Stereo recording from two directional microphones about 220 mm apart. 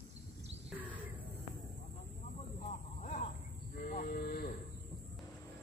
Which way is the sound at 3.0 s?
30° left (ahead or behind).